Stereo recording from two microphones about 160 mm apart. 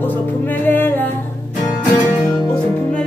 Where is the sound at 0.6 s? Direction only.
10° left (ahead or behind).